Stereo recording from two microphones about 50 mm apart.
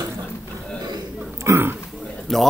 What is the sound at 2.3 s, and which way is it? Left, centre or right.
Speech, centre.